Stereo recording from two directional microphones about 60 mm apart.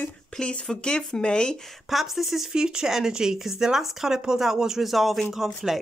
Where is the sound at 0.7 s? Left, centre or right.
Centre.